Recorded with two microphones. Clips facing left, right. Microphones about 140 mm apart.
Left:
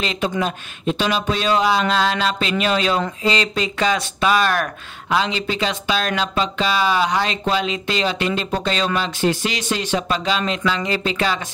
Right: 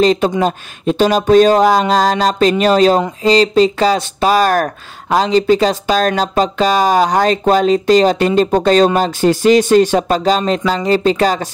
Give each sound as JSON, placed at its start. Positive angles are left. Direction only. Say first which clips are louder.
{"t": 0.0, "sound": "speech", "louder": "right 10 dB", "side_deg": -40}